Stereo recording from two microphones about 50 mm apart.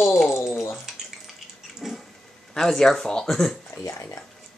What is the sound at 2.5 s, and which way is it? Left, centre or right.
Speech, centre.